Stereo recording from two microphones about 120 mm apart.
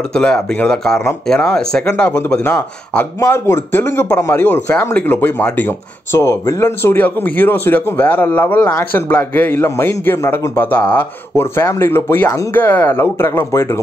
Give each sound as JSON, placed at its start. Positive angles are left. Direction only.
{"t": 0.1, "sound": "speech", "side_deg": 5}